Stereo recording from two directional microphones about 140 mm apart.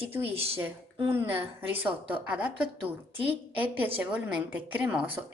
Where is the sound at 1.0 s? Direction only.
15° right (ahead or behind).